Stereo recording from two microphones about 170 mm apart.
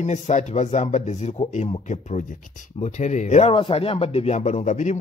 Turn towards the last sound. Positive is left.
turn(degrees=45)  # may be behind; listen again after turning